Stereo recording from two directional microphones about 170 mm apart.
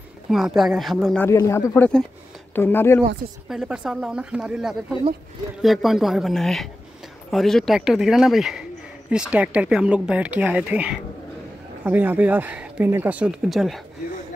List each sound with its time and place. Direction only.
0.3 s speech: centre (ahead or behind)
1.2 s speech: 15° left (ahead or behind)
3.4 s speech: 5° right (ahead or behind)